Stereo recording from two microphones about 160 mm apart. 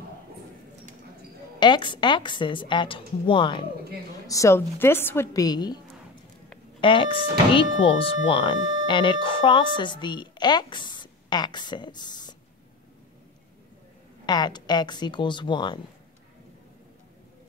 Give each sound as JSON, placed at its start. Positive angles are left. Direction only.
{"t": 1.6, "sound": "speech", "side_deg": 30}
{"t": 4.3, "sound": "a woman's voice", "side_deg": 20}
{"t": 6.8, "sound": "speech", "side_deg": 30}
{"t": 14.2, "sound": "speech", "side_deg": 25}